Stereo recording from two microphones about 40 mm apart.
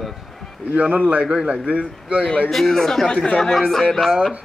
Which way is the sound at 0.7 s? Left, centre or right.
Right.